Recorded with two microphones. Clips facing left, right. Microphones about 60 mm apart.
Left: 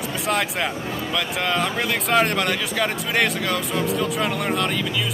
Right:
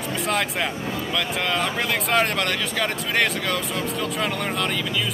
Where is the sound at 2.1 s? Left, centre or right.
Centre.